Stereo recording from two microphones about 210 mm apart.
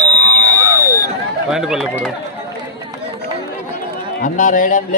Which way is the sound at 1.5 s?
Centre (ahead or behind).